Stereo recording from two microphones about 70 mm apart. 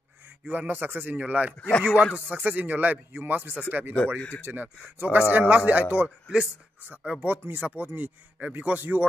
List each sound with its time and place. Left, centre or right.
0.5 s a man's voice: right
1.6 s speech: centre
2.1 s a man's voice: right
7.2 s a man's voice: right